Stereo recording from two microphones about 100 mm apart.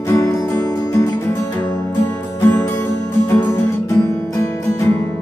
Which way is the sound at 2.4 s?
25° left (ahead or behind).